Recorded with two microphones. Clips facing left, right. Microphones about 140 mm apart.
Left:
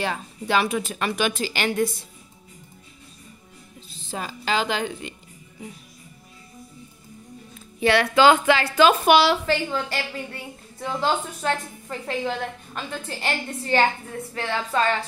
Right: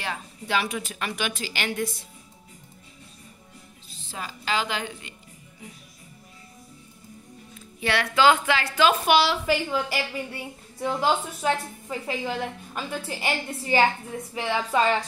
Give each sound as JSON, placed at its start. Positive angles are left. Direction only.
{"t": 0.0, "sound": "a woman's voice", "side_deg": 35}
{"t": 4.2, "sound": "a woman's voice", "side_deg": 30}
{"t": 7.8, "sound": "a woman's voice", "side_deg": 30}
{"t": 9.5, "sound": "a woman's voice", "side_deg": -10}